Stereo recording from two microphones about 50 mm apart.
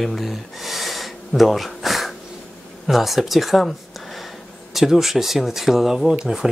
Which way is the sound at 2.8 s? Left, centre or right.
Centre.